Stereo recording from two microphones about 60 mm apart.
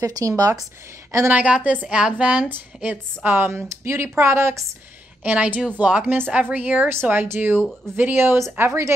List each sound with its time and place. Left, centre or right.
0.0 s speech: right
1.3 s speech: right
2.4 s speech: right
5.2 s speech: right
6.9 s speech: right